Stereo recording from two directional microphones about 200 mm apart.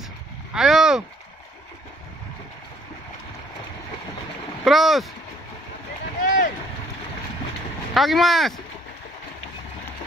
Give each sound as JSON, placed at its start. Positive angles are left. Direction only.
{"t": 0.6, "sound": "speech", "side_deg": 0}
{"t": 4.6, "sound": "speech", "side_deg": 0}
{"t": 6.2, "sound": "a sound", "side_deg": 40}
{"t": 7.9, "sound": "speech", "side_deg": 0}